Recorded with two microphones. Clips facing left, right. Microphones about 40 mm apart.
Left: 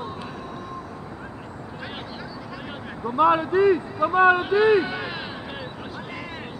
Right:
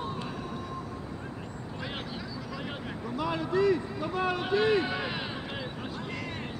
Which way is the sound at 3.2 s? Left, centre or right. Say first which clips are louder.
Left 10 dB; left.